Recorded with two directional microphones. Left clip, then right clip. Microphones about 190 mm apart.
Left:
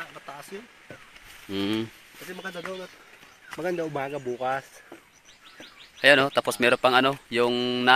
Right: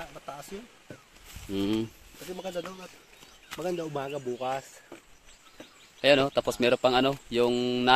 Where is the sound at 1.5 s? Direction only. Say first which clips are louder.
Left 1 dB; 10° right (ahead or behind).